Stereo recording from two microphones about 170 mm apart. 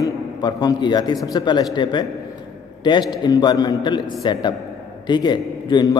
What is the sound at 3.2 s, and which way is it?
A man's voice, 25° left (ahead or behind).